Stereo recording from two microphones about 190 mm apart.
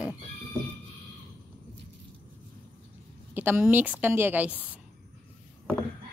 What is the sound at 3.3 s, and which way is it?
A woman's voice, 10° right (ahead or behind).